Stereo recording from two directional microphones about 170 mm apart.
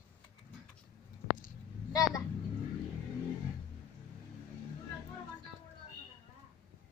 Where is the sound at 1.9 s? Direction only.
20° left (ahead or behind).